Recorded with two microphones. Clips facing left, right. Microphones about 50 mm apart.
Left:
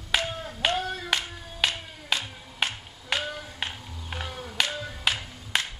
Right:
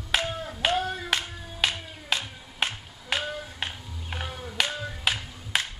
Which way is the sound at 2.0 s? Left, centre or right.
Centre.